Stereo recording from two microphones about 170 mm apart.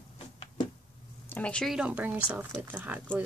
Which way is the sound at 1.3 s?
5° left (ahead or behind).